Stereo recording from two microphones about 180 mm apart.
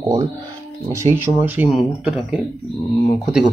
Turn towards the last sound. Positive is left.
turn(degrees=0)  # may be behind; listen again after turning